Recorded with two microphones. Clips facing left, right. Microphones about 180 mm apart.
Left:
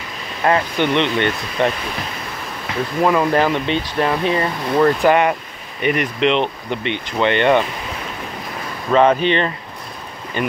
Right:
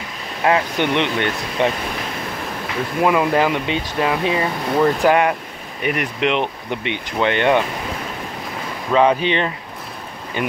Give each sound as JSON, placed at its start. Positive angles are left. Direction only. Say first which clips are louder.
{"t": 0.4, "sound": "speech", "louder": "left 1 dB", "side_deg": -5}
{"t": 3.0, "sound": "speech", "louder": "left 1 dB", "side_deg": -10}
{"t": 8.9, "sound": "speech", "louder": "left 2 dB", "side_deg": -10}